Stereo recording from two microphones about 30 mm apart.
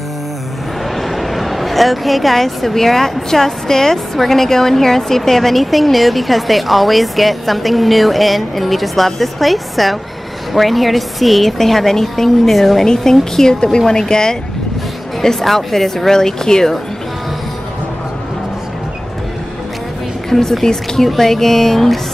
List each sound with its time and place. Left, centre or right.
0.9 s a woman's voice: centre
12.8 s speech: centre
15.4 s speech: centre
20.2 s speech: centre